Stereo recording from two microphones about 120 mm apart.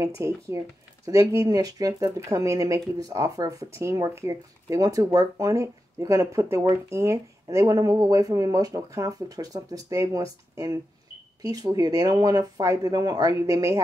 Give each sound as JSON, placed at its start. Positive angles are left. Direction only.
{"t": 0.2, "sound": "speech", "side_deg": -25}